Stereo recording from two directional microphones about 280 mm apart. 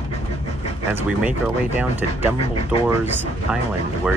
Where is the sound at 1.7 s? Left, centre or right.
Centre.